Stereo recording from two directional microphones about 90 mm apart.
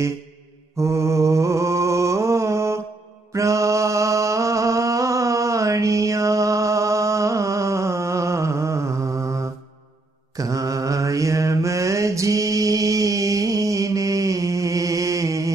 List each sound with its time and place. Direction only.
0.7 s mantra: 35° right (ahead or behind)
3.3 s music: 35° right (ahead or behind)
10.3 s mantra: 40° right (ahead or behind)